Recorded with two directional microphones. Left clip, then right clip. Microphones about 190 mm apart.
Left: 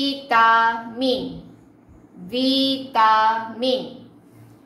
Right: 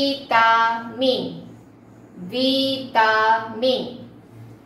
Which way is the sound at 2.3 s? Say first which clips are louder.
Even; 50° left (ahead or behind).